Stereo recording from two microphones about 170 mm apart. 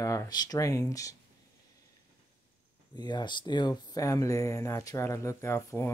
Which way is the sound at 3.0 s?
25° left (ahead or behind).